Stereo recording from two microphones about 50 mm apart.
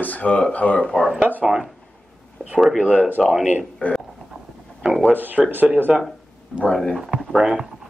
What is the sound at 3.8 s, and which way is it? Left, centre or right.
Speech, left.